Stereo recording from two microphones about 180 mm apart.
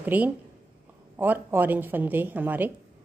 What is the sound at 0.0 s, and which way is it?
A woman's voice, 10° right (ahead or behind).